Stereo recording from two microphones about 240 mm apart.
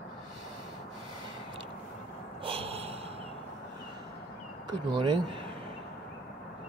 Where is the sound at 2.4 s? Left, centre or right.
Right.